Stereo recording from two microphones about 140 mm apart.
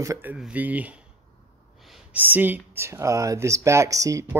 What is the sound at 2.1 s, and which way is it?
Speech, 15° right (ahead or behind).